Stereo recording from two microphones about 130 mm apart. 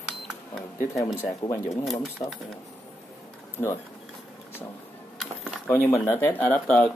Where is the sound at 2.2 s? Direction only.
50° left (ahead or behind).